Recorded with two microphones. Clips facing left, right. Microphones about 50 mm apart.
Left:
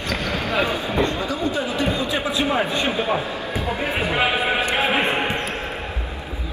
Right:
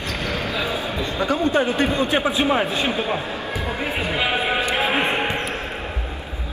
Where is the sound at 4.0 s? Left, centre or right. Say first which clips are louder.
Left 2 dB; left.